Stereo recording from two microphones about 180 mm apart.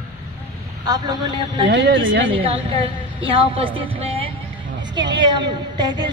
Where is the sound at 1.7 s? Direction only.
80° right.